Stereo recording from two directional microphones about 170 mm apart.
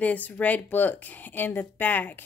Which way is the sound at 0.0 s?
10° left (ahead or behind).